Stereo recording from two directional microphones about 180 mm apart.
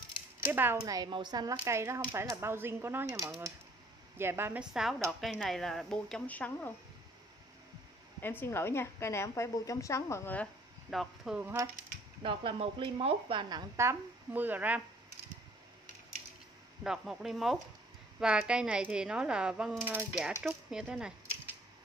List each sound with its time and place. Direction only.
0.5 s a woman's voice: 10° right (ahead or behind); by 6.7 s 10° left (ahead or behind)
8.2 s a woman's voice: 10° left (ahead or behind)
11.4 s speech: 15° right (ahead or behind)
12.2 s a woman's voice: 30° right (ahead or behind); by 14.8 s 10° right (ahead or behind)
16.8 s speech: 5° right (ahead or behind)